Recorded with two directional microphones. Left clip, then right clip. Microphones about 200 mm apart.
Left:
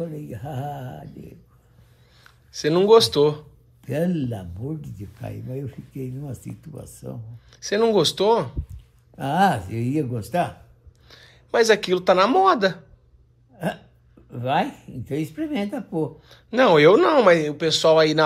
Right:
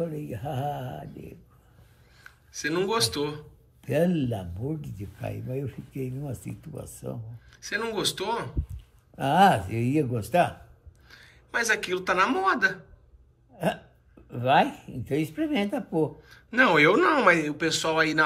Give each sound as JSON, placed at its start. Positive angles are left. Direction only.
{"t": 0.0, "sound": "speech", "side_deg": 0}
{"t": 2.1, "sound": "speech", "side_deg": 20}
{"t": 7.5, "sound": "speech", "side_deg": 20}
{"t": 8.6, "sound": "a sound", "side_deg": 0}
{"t": 9.8, "sound": "speech", "side_deg": 5}
{"t": 11.1, "sound": "speech", "side_deg": 20}
{"t": 14.3, "sound": "speech", "side_deg": 0}
{"t": 16.2, "sound": "speech", "side_deg": 20}